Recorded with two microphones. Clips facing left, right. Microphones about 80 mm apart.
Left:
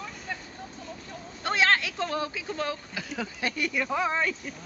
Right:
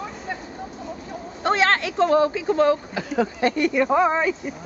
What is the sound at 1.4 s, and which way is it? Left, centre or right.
Speech, right.